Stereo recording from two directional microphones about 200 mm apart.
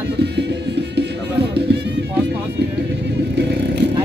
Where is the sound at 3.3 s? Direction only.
55° right (ahead or behind).